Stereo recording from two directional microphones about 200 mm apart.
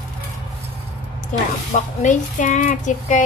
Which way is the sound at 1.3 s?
40° left (ahead or behind).